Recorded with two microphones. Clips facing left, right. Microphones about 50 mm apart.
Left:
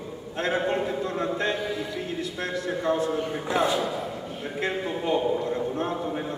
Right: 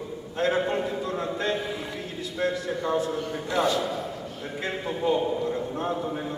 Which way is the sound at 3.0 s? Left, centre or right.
Centre.